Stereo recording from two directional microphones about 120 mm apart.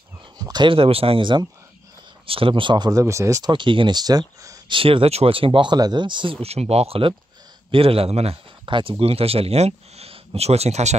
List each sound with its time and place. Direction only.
0.4 s speech: 35° right (ahead or behind)
3.5 s speech: 40° right (ahead or behind)
4.6 s speech: 45° right (ahead or behind)
6.4 s speech: 60° right (ahead or behind)
8.6 s speech: 45° right (ahead or behind); by 11.0 s 70° right (ahead or behind)